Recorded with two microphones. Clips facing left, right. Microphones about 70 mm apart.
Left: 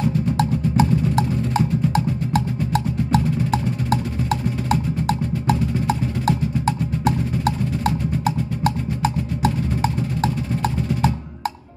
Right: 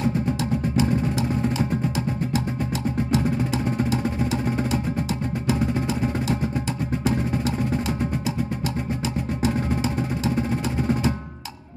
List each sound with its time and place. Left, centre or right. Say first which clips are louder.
0.4 s music: left 4 dB; left
2.3 s music: left 4 dB; left